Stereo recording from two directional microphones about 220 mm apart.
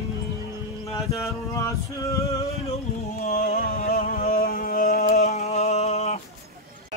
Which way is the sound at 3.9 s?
45° left (ahead or behind).